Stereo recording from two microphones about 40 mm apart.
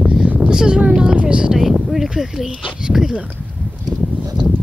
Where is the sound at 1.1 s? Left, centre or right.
Right.